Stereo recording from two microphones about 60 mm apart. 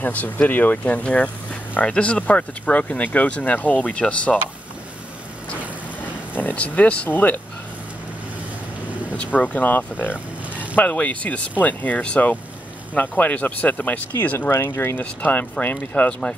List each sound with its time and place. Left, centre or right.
0.0 s speech: left
6.3 s speech: left
9.1 s speech: left
14.5 s speech: left
15.0 s speech: left